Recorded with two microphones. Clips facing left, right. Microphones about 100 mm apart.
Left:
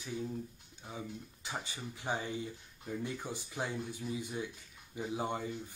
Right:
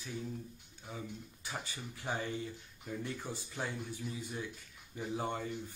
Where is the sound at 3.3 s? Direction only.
15° left (ahead or behind).